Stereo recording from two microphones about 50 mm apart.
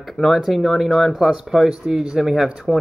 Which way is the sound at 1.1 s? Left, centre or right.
Centre.